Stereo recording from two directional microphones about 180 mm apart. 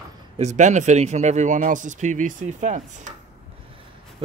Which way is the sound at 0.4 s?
40° right (ahead or behind).